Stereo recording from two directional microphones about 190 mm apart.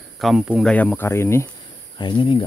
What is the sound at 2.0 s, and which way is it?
Speech, 25° left (ahead or behind).